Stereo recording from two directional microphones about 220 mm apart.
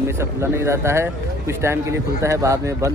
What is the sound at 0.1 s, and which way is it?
Speech, 10° right (ahead or behind).